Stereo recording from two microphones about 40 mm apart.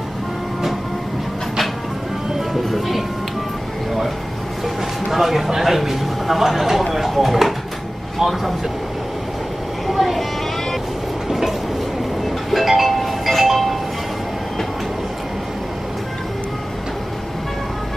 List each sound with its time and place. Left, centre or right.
2.5 s music: centre
5.1 s a sound: centre
8.2 s speech: centre
9.8 s vehicle: centre
11.2 s train: centre
12.4 s music: centre